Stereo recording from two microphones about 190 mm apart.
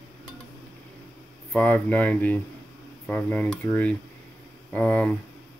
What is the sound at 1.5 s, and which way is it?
Speech, 5° left (ahead or behind).